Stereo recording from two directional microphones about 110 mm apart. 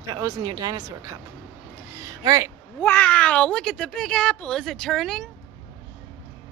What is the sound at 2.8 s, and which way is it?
Speech, 15° left (ahead or behind).